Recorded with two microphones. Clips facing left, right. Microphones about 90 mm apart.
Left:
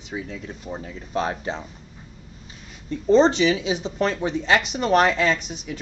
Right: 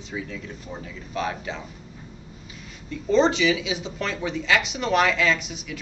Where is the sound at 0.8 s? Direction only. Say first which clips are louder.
Left 3 dB; 35° left (ahead or behind).